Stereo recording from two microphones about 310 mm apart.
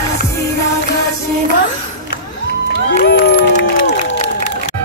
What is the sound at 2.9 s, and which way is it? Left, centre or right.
Crowd, left.